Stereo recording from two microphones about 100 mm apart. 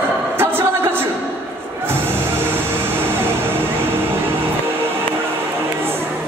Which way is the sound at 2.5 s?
20° right (ahead or behind).